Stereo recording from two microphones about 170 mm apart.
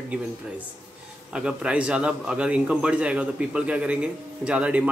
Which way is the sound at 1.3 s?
5° right (ahead or behind).